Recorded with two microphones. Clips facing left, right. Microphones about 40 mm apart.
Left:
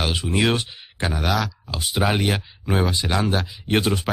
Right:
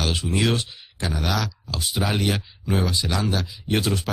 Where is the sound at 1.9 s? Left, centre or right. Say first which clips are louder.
Left 3 dB; left.